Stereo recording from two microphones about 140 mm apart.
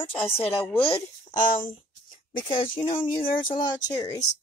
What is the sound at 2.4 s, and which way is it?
Speech, 40° left (ahead or behind).